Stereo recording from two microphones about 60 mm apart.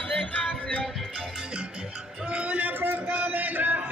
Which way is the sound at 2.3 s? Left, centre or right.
Right.